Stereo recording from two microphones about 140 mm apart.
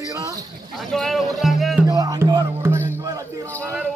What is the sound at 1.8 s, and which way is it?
Music, 25° right (ahead or behind).